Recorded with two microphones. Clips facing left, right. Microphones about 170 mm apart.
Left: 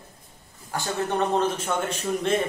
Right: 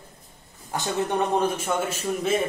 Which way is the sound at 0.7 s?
20° right (ahead or behind).